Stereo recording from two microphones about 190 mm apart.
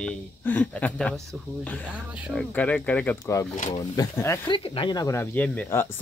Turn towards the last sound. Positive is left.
turn(degrees=10)  # may be behind; listen again after turning